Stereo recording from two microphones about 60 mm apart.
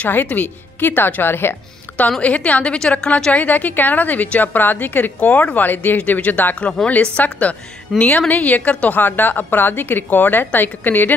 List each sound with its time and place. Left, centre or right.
0.0 s a woman's voice: left
2.2 s a woman's voice: left
3.3 s a woman's voice: left
7.9 s speech: centre
8.3 s a woman's voice: left